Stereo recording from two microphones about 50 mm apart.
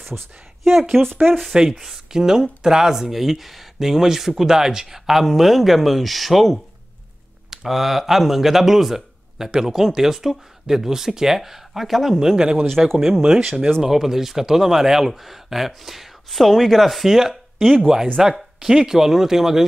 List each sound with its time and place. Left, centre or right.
0.1 s speech: right
0.7 s speech: centre
1.4 s speech: centre
12.6 s speech: centre
13.2 s speech: centre
18.2 s speech: centre